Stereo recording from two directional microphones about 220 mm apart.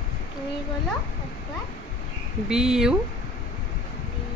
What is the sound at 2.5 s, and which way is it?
Speech, 5° right (ahead or behind).